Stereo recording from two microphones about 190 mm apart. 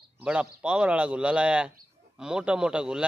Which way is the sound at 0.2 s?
5° right (ahead or behind).